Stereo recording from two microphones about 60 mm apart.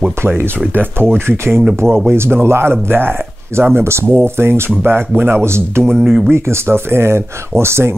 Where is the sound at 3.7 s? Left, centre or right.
Right.